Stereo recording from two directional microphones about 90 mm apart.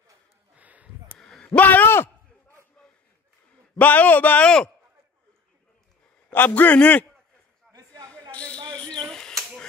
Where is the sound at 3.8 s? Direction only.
20° left (ahead or behind).